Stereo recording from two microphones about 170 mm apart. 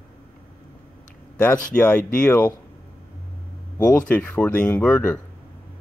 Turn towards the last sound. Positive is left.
turn(degrees=5)  # may be behind; listen again after turning